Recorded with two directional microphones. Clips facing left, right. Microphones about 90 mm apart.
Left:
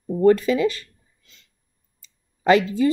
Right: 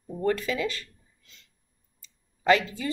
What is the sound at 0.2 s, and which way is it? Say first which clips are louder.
Speech: left 10 dB; 30° left (ahead or behind).